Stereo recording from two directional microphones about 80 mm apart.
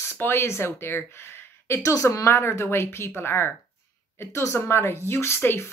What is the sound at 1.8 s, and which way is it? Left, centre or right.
Speech, left.